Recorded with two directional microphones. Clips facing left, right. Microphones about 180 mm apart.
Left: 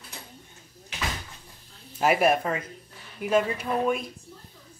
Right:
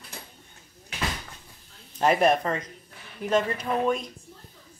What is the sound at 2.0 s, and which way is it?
Speech, 5° left (ahead or behind).